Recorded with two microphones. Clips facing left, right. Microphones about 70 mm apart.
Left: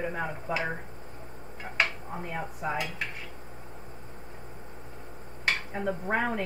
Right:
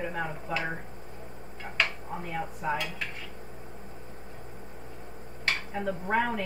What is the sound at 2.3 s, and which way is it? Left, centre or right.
Speech, centre.